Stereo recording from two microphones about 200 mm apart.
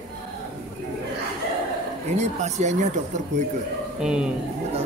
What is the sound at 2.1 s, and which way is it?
Speech, 35° right (ahead or behind).